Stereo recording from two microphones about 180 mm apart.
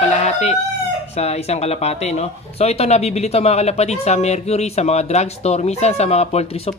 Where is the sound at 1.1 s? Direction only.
35° left (ahead or behind).